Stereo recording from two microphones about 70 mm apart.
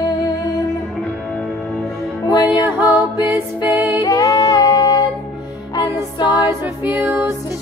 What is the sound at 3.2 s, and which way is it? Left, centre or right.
Music, right.